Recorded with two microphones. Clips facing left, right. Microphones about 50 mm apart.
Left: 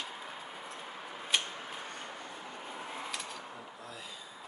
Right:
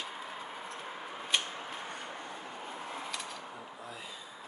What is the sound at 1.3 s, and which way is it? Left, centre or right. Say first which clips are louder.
Tick-tock: even; centre.